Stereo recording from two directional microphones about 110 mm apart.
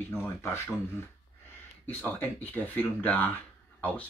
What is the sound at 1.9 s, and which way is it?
Speech, 15° left (ahead or behind).